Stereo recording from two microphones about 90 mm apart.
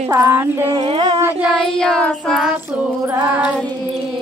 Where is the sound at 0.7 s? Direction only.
90° right.